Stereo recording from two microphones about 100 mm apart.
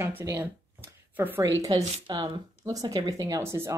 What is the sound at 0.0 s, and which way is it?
A woman's voice, 25° right (ahead or behind).